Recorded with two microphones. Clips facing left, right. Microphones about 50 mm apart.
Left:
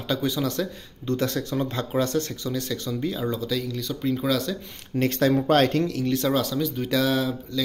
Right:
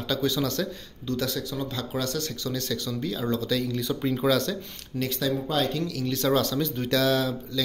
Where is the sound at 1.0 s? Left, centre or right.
Left.